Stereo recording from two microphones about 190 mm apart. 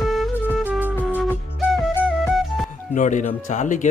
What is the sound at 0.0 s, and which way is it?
Music, centre (ahead or behind).